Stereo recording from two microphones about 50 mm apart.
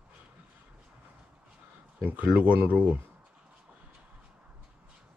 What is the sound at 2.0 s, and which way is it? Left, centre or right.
Speech, right.